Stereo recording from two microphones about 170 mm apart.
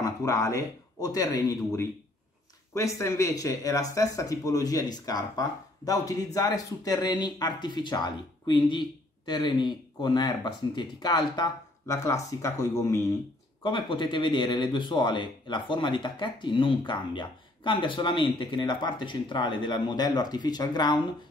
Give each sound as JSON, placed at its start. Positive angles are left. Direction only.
{"t": 0.0, "sound": "speech", "side_deg": 20}
{"t": 3.0, "sound": "speech", "side_deg": 20}
{"t": 13.6, "sound": "speech", "side_deg": 30}